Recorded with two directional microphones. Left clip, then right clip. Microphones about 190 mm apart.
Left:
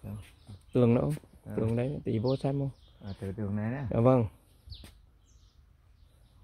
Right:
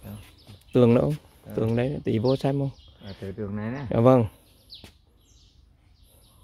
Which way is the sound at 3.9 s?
15° right (ahead or behind).